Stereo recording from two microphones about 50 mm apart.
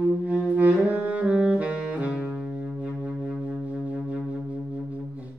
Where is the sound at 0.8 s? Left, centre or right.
Right.